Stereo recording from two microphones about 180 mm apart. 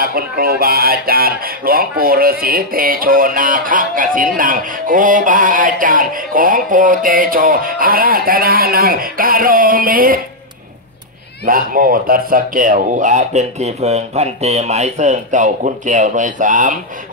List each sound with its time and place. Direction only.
0.0 s speech: 55° right (ahead or behind)
4.4 s music: 50° right (ahead or behind)
11.4 s music: 50° right (ahead or behind)